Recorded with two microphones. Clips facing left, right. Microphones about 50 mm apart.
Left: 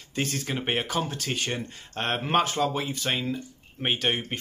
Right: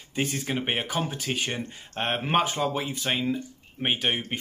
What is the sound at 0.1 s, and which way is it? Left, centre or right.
Speech, centre.